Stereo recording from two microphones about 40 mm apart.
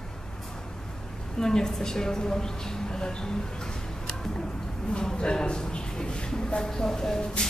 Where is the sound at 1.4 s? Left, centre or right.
Centre.